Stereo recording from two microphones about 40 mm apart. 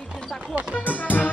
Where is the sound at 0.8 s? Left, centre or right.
Left.